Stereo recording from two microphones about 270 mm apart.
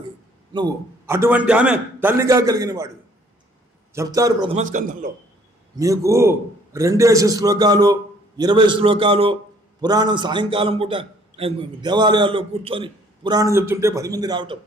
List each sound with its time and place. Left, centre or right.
0.5 s a man's voice: centre
3.9 s a man's voice: centre; by 5.1 s right
5.8 s a man's voice: centre